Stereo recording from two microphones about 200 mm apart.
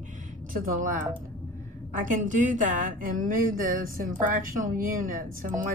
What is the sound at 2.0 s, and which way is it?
Speech, 40° right (ahead or behind).